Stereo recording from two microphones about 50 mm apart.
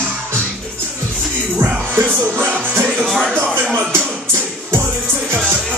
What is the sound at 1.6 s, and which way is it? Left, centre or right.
Music, right.